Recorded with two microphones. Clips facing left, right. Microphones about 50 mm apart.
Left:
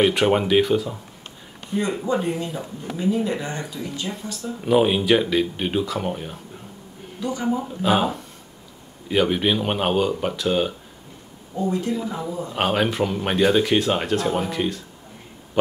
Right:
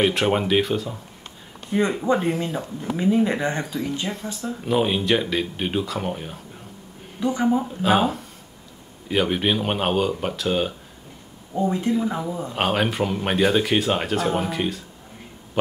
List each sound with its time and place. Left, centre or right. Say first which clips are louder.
0.0 s speech: left 2 dB; centre
1.7 s speech: right 2 dB; right
2.4 s speech: right 3 dB; centre
4.2 s speech: left 2 dB; centre
7.2 s speech: right 4 dB; right
7.6 s speech: right 1 dB; centre
11.5 s speech: right 1 dB; right
12.2 s speech: even; centre
15.6 s throat clearing: left 3 dB; centre